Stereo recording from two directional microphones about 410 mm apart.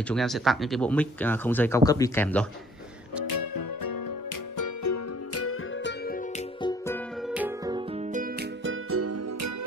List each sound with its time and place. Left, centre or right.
0.1 s speech: centre
3.3 s music: left
4.6 s music: left
6.6 s music: centre
7.3 s music: centre; by 9.7 s right